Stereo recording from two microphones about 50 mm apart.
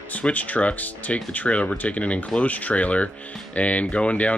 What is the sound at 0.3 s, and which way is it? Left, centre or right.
Speech, left.